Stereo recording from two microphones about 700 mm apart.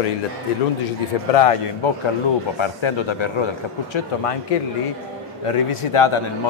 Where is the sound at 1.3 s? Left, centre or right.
Left.